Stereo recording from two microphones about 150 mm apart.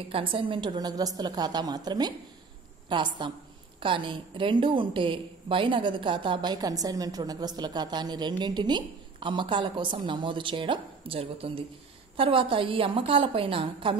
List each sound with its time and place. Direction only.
0.1 s a woman's voice: 35° right (ahead or behind)